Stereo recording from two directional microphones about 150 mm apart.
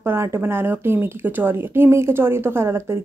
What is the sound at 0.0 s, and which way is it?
Speech, 15° right (ahead or behind).